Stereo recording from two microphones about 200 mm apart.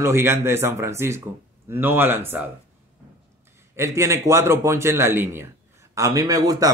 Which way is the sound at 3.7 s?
15° right (ahead or behind).